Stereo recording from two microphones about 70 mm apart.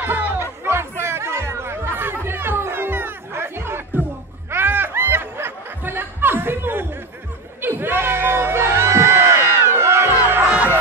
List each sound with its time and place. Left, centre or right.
0.0 s chatter: right
0.7 s chatter: right
2.2 s music: right
7.6 s crowd: right